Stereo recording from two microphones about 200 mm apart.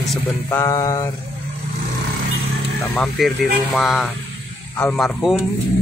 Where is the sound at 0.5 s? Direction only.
15° left (ahead or behind).